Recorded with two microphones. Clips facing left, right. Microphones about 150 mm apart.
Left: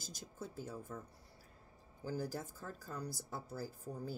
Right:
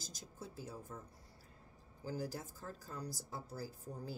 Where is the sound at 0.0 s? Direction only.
50° left (ahead or behind).